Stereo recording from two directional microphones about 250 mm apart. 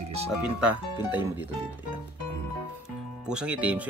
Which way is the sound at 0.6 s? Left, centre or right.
Centre.